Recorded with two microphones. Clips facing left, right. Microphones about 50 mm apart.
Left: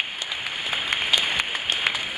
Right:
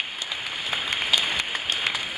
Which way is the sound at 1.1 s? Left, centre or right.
Centre.